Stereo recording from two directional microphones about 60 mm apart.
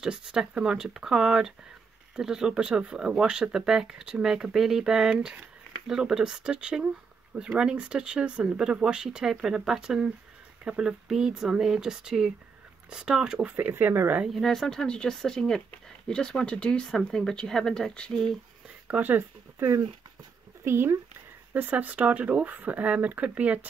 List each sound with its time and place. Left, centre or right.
0.0 s speech: centre
13.6 s speech: right
14.3 s speech: centre
16.8 s speech: centre
18.9 s speech: right
21.5 s speech: right